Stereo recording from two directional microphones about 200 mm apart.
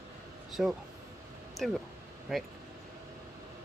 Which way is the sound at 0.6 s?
Centre (ahead or behind).